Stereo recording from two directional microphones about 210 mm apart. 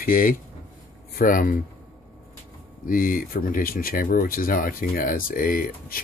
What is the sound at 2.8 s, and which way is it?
Speech, 40° left (ahead or behind).